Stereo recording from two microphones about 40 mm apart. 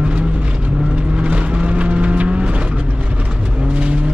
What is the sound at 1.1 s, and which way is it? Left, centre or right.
Vehicle, right.